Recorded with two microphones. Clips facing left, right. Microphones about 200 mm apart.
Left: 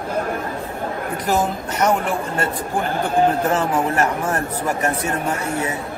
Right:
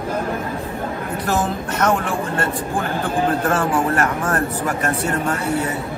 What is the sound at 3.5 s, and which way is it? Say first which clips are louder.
Speech: right 1 dB; 20° left (ahead or behind).